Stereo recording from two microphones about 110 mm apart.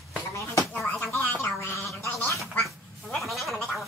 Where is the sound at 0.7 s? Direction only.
10° left (ahead or behind).